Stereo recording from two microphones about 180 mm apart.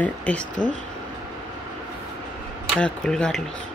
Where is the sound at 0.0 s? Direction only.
10° left (ahead or behind).